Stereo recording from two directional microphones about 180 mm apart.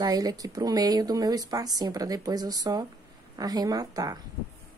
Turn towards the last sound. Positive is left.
turn(degrees=-20)  # may be behind; listen again after turning